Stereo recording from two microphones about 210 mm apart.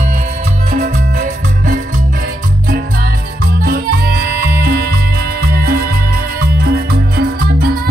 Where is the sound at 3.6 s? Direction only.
45° right (ahead or behind).